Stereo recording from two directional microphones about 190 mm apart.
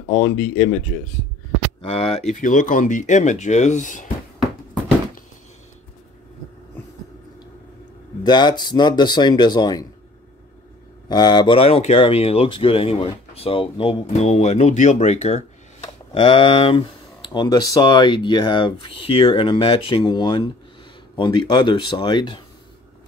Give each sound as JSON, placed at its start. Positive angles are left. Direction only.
{"t": 0.1, "sound": "speech", "side_deg": 50}
{"t": 1.8, "sound": "speech", "side_deg": 30}
{"t": 8.2, "sound": "speech", "side_deg": 20}
{"t": 11.1, "sound": "speech", "side_deg": 20}